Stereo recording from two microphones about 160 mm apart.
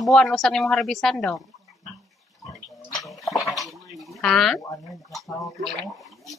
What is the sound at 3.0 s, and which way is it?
Bathtub, centre (ahead or behind).